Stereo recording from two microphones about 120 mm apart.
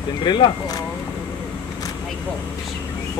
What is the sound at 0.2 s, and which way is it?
Speech, 40° left (ahead or behind).